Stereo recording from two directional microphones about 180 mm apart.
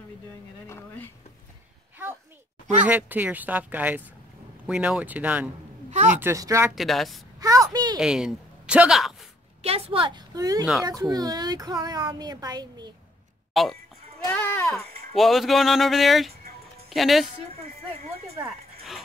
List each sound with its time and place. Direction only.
0.7 s speech: 10° left (ahead or behind)
2.9 s speech: 10° right (ahead or behind)
5.9 s a sound: 40° right (ahead or behind)
6.1 s speech: 15° right (ahead or behind)
6.7 s speech: centre (ahead or behind)
7.3 s a sound: 20° right (ahead or behind)
8.0 s speech: 5° right (ahead or behind)
9.6 s a woman's voice: 35° right (ahead or behind)
13.5 s a sound: centre (ahead or behind)
14.2 s a sound: 10° left (ahead or behind)
15.1 s speech: centre (ahead or behind)
17.9 s speech: 35° right (ahead or behind)